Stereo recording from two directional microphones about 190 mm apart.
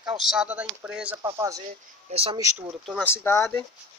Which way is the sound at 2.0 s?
30° right (ahead or behind).